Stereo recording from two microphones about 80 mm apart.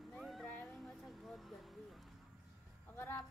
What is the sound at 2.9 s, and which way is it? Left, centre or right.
Chicken, left.